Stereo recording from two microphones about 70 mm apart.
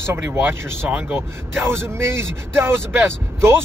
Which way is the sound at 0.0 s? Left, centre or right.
Right.